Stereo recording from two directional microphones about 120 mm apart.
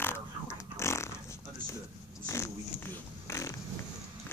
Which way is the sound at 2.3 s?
20° left (ahead or behind).